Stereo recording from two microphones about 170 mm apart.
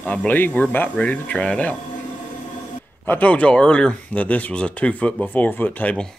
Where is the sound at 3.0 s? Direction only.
10° left (ahead or behind).